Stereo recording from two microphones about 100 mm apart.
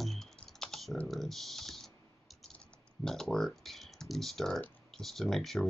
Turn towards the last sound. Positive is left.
turn(degrees=5)  # may be behind; listen again after turning